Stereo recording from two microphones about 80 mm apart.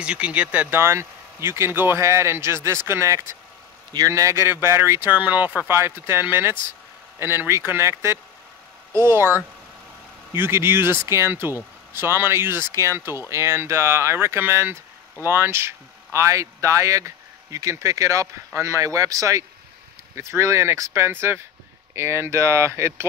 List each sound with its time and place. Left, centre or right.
0.0 s speech: centre
0.7 s speech: right
5.7 s speech: right